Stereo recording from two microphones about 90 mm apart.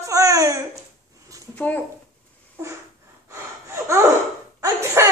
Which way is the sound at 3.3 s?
30° right (ahead or behind).